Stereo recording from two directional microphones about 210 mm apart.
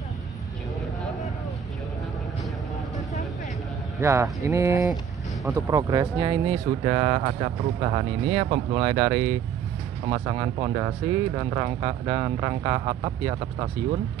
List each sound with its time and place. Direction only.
4.0 s speech: 15° right (ahead or behind)